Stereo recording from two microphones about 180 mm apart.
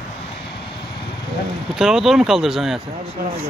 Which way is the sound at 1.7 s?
5° right (ahead or behind).